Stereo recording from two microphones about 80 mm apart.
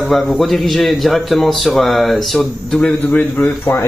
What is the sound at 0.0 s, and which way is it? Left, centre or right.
A man's voice, centre.